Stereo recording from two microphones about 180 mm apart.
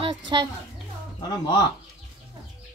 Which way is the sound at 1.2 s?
25° left (ahead or behind).